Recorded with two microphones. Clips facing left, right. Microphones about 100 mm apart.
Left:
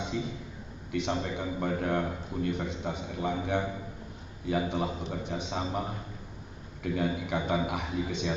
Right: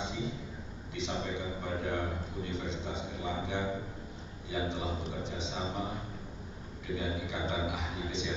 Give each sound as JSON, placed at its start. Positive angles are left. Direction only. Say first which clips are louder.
{"t": 0.9, "sound": "a man's voice", "louder": "left 5 dB", "side_deg": 55}